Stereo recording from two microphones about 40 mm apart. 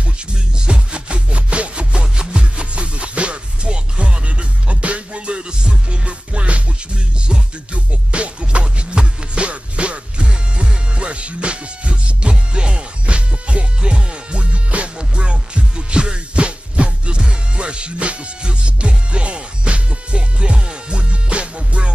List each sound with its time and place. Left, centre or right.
0.0 s music: right